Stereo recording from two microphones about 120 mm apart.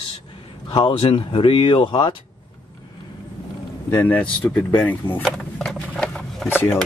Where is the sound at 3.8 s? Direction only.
15° left (ahead or behind).